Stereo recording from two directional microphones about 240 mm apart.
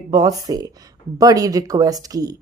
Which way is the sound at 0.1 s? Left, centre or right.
Centre.